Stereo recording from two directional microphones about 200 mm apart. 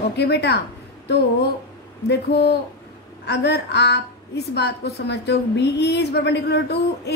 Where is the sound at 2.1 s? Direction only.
55° left (ahead or behind).